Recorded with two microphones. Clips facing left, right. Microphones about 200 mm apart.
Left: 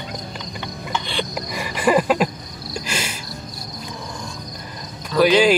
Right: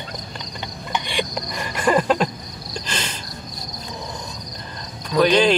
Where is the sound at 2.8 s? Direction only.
10° left (ahead or behind).